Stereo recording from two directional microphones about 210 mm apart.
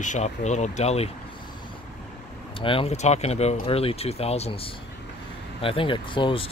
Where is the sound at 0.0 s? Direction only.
35° left (ahead or behind).